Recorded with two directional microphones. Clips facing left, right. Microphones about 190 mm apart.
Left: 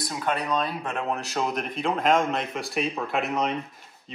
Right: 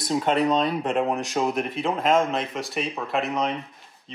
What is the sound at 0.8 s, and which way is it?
Speech, 15° right (ahead or behind).